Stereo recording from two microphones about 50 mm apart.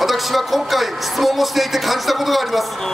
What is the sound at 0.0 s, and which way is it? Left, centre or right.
Speech, centre.